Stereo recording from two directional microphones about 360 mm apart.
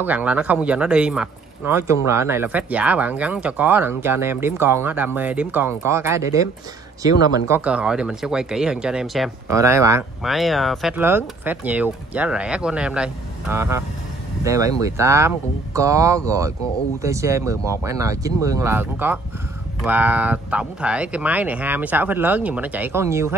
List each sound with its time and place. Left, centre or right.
0.0 s speech: centre